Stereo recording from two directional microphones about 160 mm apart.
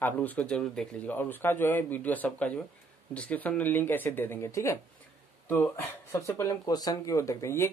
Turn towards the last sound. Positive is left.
turn(degrees=15)  # may be behind; listen again after turning